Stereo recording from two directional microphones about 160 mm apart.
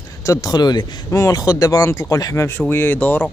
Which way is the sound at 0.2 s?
20° left (ahead or behind).